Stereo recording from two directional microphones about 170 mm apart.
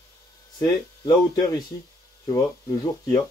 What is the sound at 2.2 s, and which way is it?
Speech, 20° left (ahead or behind).